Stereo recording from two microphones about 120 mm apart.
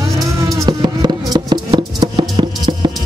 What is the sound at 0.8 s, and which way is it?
Music, 40° right (ahead or behind).